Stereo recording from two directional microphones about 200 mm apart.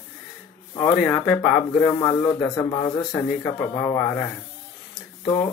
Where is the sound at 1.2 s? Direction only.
5° left (ahead or behind); by 3.5 s 20° left (ahead or behind).